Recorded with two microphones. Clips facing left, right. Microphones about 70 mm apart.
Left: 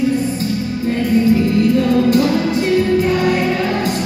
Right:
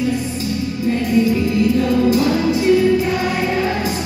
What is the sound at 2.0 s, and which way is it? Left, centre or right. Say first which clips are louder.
Music: left 1 dB; left.